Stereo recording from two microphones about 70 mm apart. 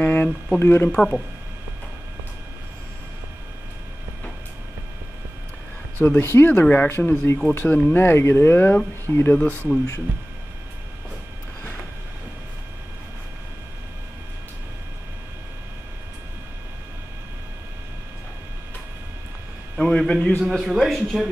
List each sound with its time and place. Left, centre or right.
0.0 s a sound: left
0.6 s speech: left
0.8 s a man's voice: centre
5.9 s speech: left
19.8 s a man's voice: centre